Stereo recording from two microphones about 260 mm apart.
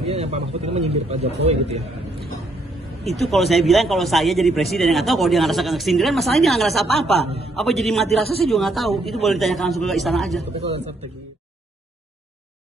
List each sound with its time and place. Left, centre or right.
0.1 s a man's voice: right
3.1 s a man's voice: centre